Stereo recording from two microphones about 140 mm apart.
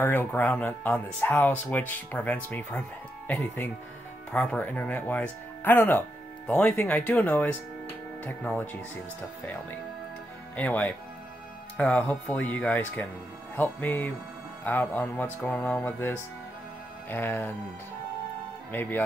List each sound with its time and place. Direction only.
0.0 s speech: 15° left (ahead or behind)
10.5 s speech: 10° left (ahead or behind)
18.7 s speech: 15° left (ahead or behind)